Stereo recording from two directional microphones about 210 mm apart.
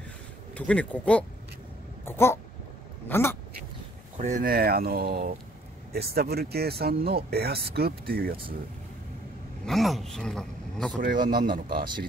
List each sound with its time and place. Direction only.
0.6 s speech: 5° left (ahead or behind)
2.0 s a sound: 10° left (ahead or behind)
4.2 s speech: 35° right (ahead or behind)
9.7 s speech: centre (ahead or behind)
11.0 s a man's voice: 40° right (ahead or behind)